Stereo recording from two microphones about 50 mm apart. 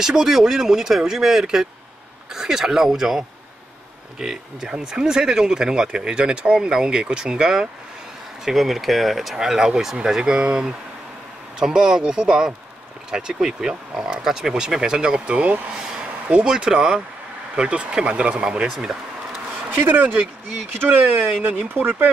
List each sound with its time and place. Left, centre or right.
0.0 s speech: centre; by 15.6 s right
15.7 s a sound: centre
16.3 s speech: centre
19.7 s speech: right